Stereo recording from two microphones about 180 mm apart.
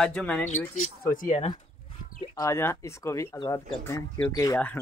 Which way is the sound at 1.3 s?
30° left (ahead or behind).